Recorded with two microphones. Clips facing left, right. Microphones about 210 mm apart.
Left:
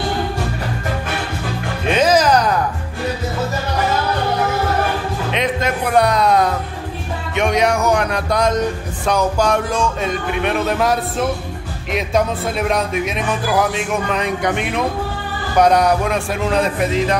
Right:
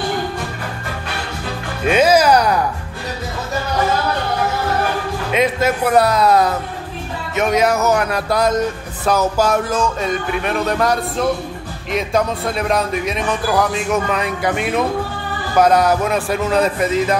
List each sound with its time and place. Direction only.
2.0 s music: 10° right (ahead or behind)
5.3 s speech: 5° right (ahead or behind)
15.6 s speech: centre (ahead or behind)